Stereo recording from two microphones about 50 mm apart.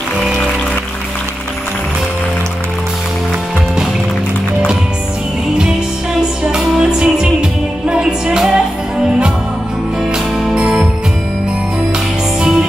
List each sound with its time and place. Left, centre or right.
6.4 s music: centre
10.1 s music: centre
12.4 s music: centre